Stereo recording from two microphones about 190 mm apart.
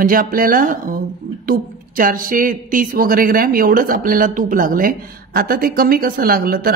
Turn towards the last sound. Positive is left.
turn(degrees=-50)  # may be behind; listen again after turning